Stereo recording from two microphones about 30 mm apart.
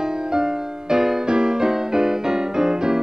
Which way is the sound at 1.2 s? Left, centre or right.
Right.